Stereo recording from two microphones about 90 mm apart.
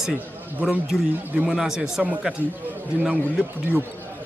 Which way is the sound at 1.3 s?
15° right (ahead or behind).